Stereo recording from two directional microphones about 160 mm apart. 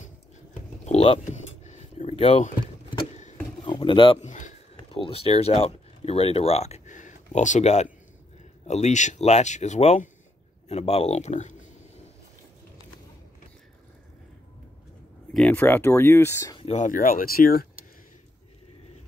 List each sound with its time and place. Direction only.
0.8 s a sound: 40° left (ahead or behind)
3.6 s speech: 30° left (ahead or behind)
4.2 s a sound: 50° left (ahead or behind)
4.7 s speech: 35° left (ahead or behind)
15.3 s speech: 5° left (ahead or behind)
16.5 s speech: 45° left (ahead or behind); by 17.6 s 65° left (ahead or behind)